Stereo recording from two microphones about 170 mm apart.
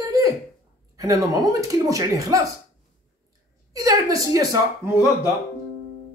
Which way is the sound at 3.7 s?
20° right (ahead or behind).